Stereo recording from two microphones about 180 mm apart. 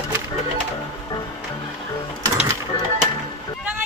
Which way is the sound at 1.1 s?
20° left (ahead or behind).